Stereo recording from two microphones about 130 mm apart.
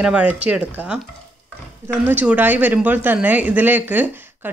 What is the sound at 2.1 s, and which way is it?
Speech, 15° right (ahead or behind).